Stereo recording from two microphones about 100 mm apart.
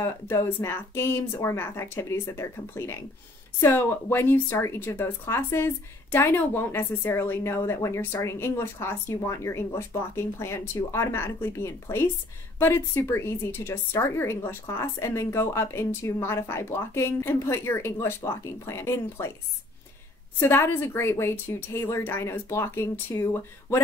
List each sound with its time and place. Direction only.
0.0 s a woman's voice: 30° left (ahead or behind)
20.3 s a woman's voice: 25° left (ahead or behind)